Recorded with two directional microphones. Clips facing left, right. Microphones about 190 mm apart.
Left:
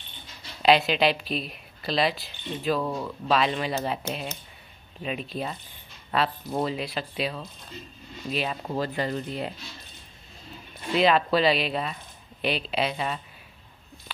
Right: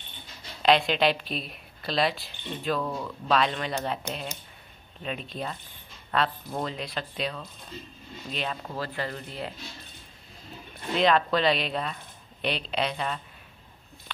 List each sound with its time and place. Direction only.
0.6 s a woman's voice: 5° left (ahead or behind)
2.8 s a woman's voice: 15° left (ahead or behind)
5.0 s a woman's voice: 5° left (ahead or behind)
8.6 s speech: 20° left (ahead or behind)
11.0 s a woman's voice: 5° left (ahead or behind)